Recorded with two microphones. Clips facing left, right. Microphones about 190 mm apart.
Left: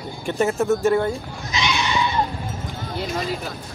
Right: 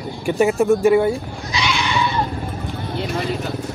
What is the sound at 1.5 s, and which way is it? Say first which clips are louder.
Goat: right 1 dB; 20° left (ahead or behind).